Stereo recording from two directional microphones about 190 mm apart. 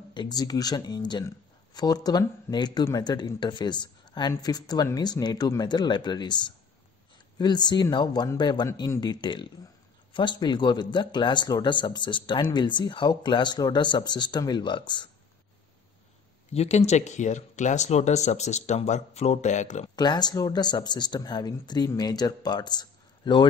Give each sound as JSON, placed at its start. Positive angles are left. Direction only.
{"t": 0.1, "sound": "speech", "side_deg": 20}
{"t": 16.5, "sound": "speech", "side_deg": 35}
{"t": 20.0, "sound": "speech", "side_deg": 20}